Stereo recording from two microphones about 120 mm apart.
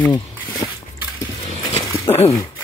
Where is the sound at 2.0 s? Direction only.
55° left (ahead or behind).